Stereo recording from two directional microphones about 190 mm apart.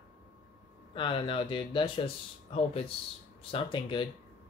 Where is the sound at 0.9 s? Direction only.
25° left (ahead or behind).